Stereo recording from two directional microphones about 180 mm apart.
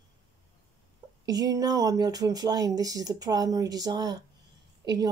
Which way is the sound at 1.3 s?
20° right (ahead or behind).